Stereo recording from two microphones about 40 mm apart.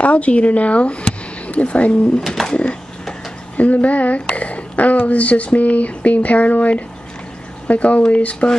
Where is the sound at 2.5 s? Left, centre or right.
Left.